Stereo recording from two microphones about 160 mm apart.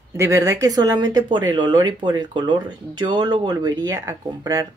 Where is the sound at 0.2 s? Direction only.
20° right (ahead or behind).